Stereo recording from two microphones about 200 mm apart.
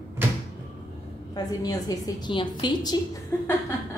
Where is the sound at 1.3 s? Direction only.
20° left (ahead or behind).